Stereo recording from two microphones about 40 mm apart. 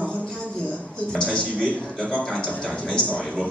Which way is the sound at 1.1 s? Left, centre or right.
Left.